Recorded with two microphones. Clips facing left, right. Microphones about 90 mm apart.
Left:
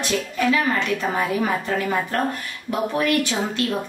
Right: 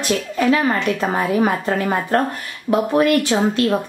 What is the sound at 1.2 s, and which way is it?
A woman's voice, 40° right (ahead or behind).